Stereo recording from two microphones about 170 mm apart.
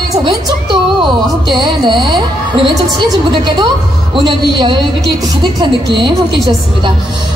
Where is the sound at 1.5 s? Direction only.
25° right (ahead or behind).